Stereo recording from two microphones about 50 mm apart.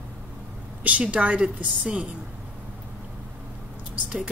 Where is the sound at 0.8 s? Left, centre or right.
Right.